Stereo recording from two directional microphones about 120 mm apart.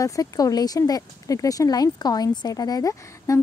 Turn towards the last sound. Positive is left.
turn(degrees=30)  # may be behind; listen again after turning